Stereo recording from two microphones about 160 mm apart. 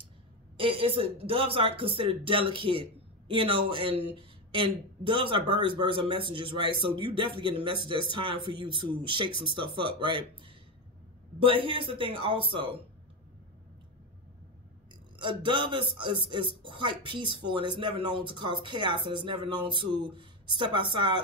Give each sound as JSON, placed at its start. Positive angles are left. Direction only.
{"t": 0.6, "sound": "speech", "side_deg": -35}
{"t": 15.1, "sound": "speech", "side_deg": -30}